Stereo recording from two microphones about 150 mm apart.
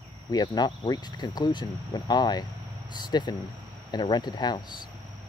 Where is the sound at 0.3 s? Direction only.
25° left (ahead or behind).